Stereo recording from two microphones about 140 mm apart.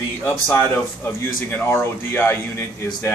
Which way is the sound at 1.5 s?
15° left (ahead or behind).